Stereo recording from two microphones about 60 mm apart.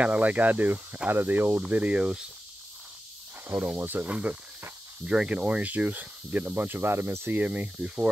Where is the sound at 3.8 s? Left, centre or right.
Right.